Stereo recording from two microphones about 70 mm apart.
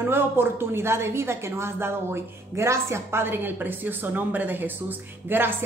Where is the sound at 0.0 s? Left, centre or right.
Right.